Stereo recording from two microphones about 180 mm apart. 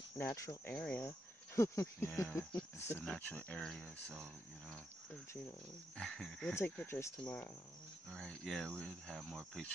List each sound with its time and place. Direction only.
0.2 s speech: 20° left (ahead or behind)
5.9 s speech: 5° left (ahead or behind)